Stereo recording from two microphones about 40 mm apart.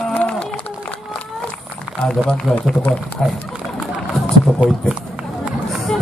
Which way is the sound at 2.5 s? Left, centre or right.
Left.